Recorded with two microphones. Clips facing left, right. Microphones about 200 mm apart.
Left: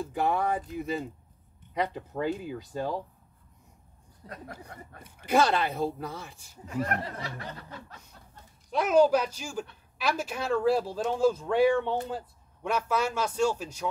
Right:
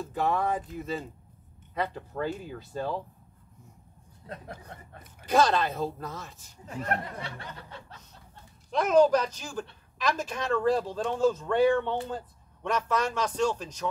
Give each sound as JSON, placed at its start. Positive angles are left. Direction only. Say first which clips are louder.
{"t": 0.0, "sound": "speech", "louder": "even", "side_deg": 15}
{"t": 4.2, "sound": "speech", "louder": "right 2 dB", "side_deg": 40}
{"t": 4.7, "sound": "speech", "louder": "left 1 dB", "side_deg": -25}
{"t": 5.3, "sound": "speech", "louder": "even", "side_deg": 10}
{"t": 8.6, "sound": "speech", "louder": "right 1 dB", "side_deg": 5}